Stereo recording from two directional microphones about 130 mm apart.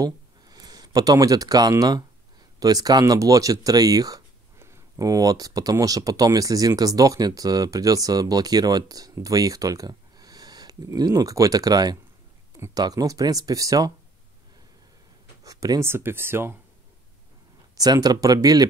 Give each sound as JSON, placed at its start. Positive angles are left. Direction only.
{"t": 0.0, "sound": "speech", "side_deg": -30}
{"t": 15.4, "sound": "speech", "side_deg": -25}
{"t": 17.7, "sound": "speech", "side_deg": -30}